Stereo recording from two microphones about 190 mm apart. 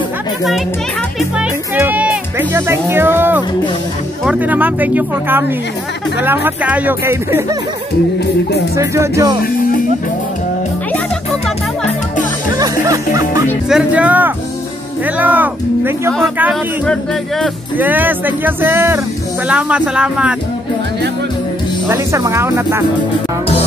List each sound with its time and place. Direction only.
1.4 s speech: 10° right (ahead or behind)
8.7 s speech: 15° right (ahead or behind)
12.5 s music: 20° right (ahead or behind)
13.7 s speech: 5° right (ahead or behind)
16.8 s yodeling: 5° left (ahead or behind)
17.7 s speech: 10° right (ahead or behind)
21.8 s speech: 15° right (ahead or behind)